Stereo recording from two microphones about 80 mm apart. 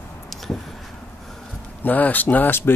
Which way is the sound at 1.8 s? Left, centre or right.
Left.